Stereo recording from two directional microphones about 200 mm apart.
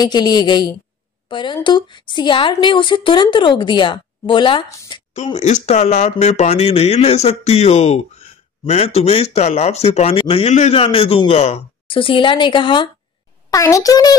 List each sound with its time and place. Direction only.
0.0 s speech: 20° left (ahead or behind)
5.1 s a child's voice: 35° left (ahead or behind); by 14.1 s 20° left (ahead or behind)